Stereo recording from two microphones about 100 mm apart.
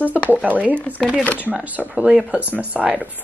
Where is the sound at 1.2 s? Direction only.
15° left (ahead or behind).